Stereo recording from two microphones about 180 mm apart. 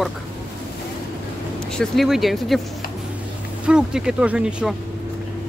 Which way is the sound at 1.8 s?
Centre (ahead or behind).